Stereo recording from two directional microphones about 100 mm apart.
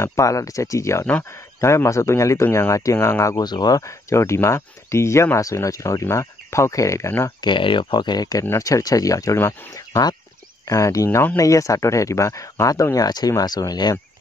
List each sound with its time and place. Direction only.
0.0 s speech: 30° left (ahead or behind)
3.4 s speech: 45° left (ahead or behind); by 7.3 s 25° left (ahead or behind)
7.4 s speech: 55° left (ahead or behind); by 9.4 s 35° left (ahead or behind)
10.7 s speech: 30° left (ahead or behind)